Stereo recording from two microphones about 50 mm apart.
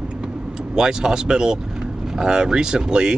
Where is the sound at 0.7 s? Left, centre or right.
Centre.